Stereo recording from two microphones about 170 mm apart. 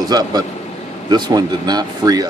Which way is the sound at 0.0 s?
20° right (ahead or behind).